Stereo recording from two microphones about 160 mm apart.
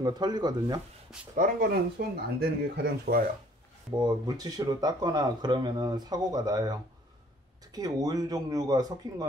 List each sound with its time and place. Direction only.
0.0 s speech: 25° right (ahead or behind)
1.3 s speech: 60° right (ahead or behind); by 3.2 s 80° right
3.9 s speech: 25° right (ahead or behind)